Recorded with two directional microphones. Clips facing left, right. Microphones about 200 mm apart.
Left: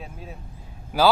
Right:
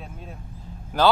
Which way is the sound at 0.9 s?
10° left (ahead or behind).